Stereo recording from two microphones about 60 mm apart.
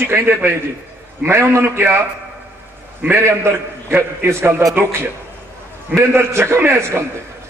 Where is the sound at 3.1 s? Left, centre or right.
Right.